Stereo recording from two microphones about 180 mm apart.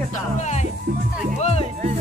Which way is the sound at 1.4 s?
35° left (ahead or behind).